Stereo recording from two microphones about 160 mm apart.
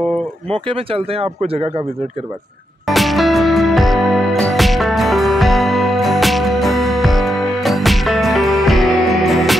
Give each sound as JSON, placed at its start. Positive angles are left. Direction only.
{"t": 0.5, "sound": "speech", "side_deg": -35}
{"t": 2.9, "sound": "music", "side_deg": 0}